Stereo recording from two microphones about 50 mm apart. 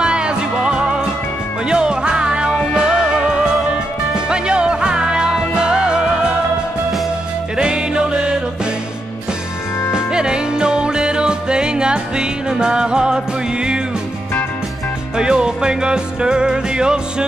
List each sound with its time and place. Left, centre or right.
0.0 s music: centre
4.3 s music: centre
7.5 s music: centre
9.9 s music: centre
15.1 s music: centre